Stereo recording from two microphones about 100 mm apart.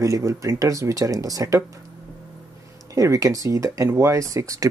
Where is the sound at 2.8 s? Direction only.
35° right (ahead or behind).